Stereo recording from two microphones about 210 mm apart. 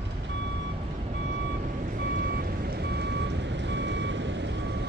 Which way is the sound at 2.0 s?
50° right (ahead or behind).